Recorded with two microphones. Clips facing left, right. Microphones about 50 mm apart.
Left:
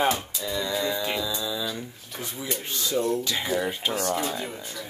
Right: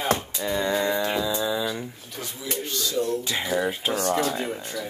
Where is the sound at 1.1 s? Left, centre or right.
Right.